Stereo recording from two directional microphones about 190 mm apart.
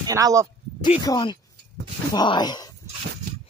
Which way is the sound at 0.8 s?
20° left (ahead or behind).